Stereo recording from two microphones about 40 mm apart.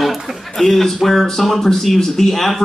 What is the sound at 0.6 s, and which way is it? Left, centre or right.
Speech, centre.